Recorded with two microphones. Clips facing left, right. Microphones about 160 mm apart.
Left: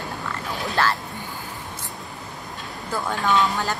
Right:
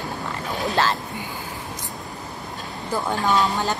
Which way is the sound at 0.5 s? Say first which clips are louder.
Right 2 dB; 20° right (ahead or behind).